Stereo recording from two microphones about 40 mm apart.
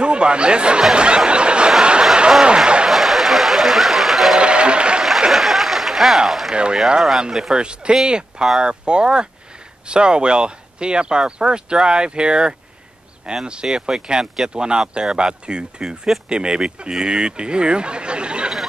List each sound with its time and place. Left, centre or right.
0.0 s speech: right
0.9 s a sound: right
2.4 s speech: right
2.9 s a sound: centre
4.4 s applause: right
5.3 s applause: centre
6.1 s speech: centre
6.5 s speech: right
7.0 s speech: centre
7.5 s speech: right